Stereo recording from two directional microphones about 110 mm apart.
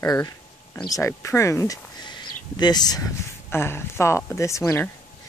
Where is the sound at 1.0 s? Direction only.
25° left (ahead or behind).